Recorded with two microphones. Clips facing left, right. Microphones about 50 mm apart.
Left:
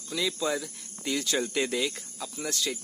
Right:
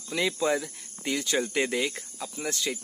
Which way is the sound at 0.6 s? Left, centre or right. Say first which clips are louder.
Right 2 dB; centre.